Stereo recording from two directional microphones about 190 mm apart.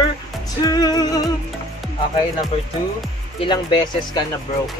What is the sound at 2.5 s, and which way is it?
Speech, 30° left (ahead or behind).